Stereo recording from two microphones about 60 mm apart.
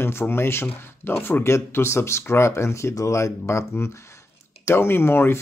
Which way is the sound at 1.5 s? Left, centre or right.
Left.